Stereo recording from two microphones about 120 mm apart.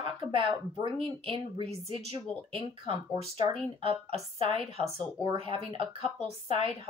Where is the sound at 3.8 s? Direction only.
50° right (ahead or behind).